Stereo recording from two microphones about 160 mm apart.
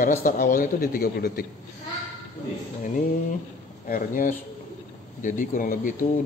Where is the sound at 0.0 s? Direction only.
55° left (ahead or behind).